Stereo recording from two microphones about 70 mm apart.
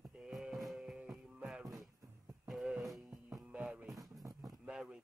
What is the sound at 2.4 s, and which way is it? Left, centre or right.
Music, centre.